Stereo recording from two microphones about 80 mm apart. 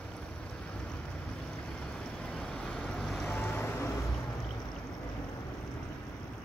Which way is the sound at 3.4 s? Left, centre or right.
Left.